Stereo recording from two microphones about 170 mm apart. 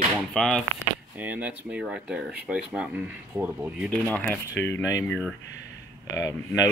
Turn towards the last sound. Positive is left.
turn(degrees=15)  # may be behind; listen again after turning